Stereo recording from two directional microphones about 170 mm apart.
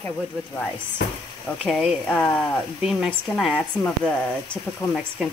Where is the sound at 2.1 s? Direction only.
10° left (ahead or behind).